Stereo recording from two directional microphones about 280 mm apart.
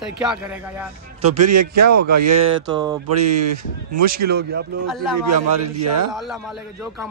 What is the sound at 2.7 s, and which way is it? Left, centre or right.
Speech, centre.